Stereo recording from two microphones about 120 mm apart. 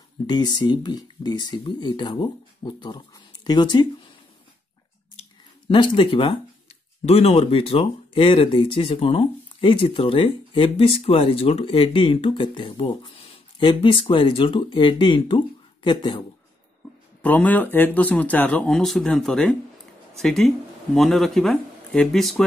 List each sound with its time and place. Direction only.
0.3 s speech: 35° left (ahead or behind)
5.7 s speech: 45° left (ahead or behind)
17.2 s speech: 15° left (ahead or behind)